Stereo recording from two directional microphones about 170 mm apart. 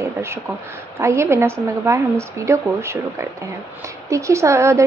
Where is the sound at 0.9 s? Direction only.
15° right (ahead or behind).